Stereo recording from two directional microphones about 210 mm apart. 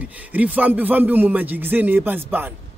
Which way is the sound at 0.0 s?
5° right (ahead or behind).